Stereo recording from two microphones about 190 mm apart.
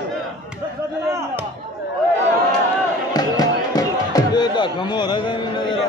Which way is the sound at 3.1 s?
20° left (ahead or behind).